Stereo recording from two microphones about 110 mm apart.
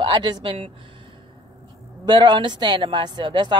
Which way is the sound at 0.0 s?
45° right (ahead or behind).